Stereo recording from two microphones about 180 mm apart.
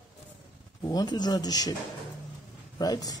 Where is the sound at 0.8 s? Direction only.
20° left (ahead or behind).